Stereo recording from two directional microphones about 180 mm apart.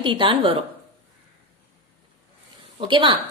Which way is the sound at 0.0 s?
25° right (ahead or behind).